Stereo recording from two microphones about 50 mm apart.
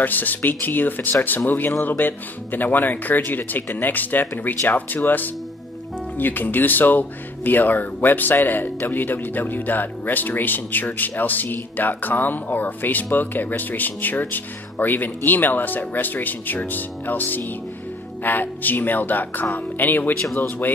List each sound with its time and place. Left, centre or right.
0.0 s speech: left